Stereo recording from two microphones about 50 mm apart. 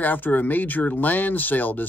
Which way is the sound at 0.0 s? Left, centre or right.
Left.